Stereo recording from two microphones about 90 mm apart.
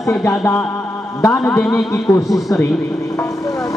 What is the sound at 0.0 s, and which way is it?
Speech, 35° left (ahead or behind).